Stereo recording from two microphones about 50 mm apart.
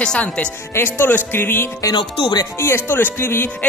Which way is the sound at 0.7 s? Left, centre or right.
Left.